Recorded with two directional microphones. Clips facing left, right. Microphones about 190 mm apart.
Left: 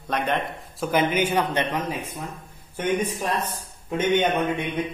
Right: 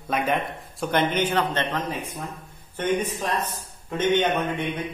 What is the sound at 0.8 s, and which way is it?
A man's voice, 5° left (ahead or behind).